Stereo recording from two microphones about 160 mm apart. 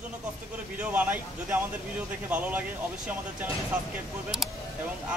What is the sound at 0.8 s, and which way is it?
Speech, 10° right (ahead or behind).